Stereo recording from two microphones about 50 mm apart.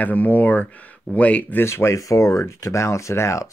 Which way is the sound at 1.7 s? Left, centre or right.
Left.